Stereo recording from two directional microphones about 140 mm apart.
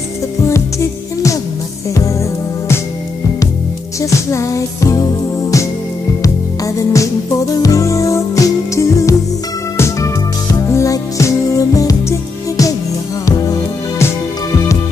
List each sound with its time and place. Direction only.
0.5 s music: 20° left (ahead or behind)
4.0 s music: 20° left (ahead or behind)